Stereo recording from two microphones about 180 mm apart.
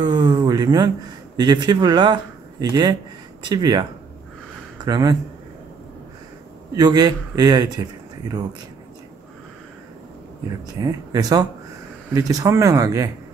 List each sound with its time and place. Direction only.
0.0 s a man's voice: 25° right (ahead or behind)
4.8 s speech: 20° right (ahead or behind)
6.7 s a man's voice: 20° right (ahead or behind)
10.8 s a man's voice: 20° right (ahead or behind)